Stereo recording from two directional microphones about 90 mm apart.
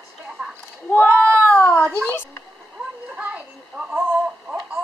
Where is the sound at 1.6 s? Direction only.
20° left (ahead or behind).